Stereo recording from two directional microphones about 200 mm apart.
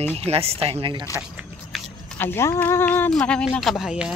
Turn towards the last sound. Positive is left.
turn(degrees=0)  # may be behind; listen again after turning